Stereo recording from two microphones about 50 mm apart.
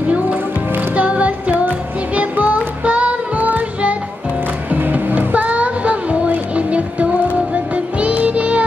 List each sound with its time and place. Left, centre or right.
0.3 s music: right